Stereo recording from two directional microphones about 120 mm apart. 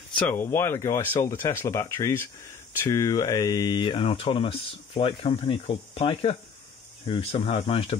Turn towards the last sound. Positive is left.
turn(degrees=50)  # may be behind; listen again after turning